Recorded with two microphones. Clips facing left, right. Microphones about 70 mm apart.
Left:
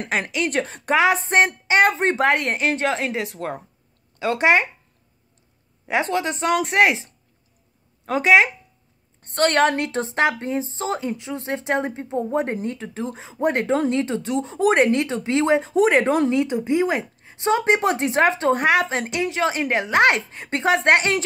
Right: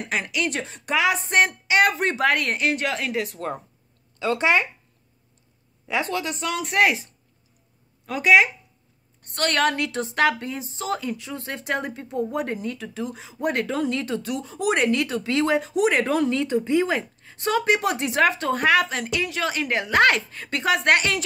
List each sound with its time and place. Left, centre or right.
0.0 s speech: left
5.9 s speech: left
16.3 s speech: centre